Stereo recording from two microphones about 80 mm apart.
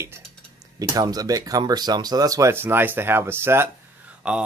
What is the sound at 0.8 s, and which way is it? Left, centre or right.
Speech, right.